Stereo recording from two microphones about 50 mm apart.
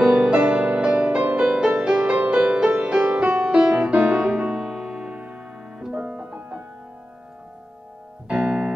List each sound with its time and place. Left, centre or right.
0.0 s music: right
3.9 s piano: right
5.9 s music: centre
8.3 s piano: centre